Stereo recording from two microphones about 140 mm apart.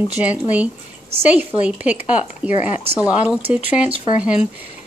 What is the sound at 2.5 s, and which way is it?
Speech, 55° left (ahead or behind).